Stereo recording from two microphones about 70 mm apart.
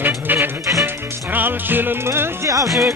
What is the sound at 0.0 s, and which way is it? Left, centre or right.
Music, right.